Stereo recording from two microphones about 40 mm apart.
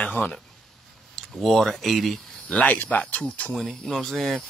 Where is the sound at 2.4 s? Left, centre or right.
Left.